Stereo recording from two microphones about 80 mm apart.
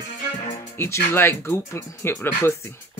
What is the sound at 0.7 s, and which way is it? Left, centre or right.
Speech, left.